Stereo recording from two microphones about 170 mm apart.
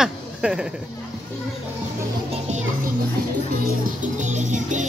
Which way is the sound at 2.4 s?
45° right (ahead or behind).